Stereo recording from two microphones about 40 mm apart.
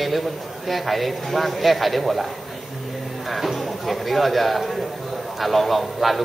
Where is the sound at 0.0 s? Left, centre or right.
Centre.